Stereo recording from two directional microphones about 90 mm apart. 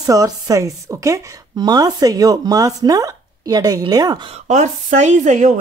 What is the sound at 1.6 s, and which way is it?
Speech, 50° right (ahead or behind).